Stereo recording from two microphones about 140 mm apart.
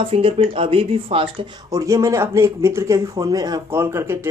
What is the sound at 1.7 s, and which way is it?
Speech, 25° right (ahead or behind).